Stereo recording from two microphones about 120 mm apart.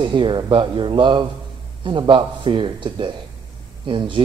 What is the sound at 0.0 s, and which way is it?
A man's voice, 40° right (ahead or behind).